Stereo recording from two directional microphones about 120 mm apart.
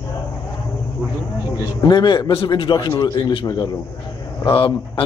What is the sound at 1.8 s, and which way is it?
A man's voice, 35° left (ahead or behind).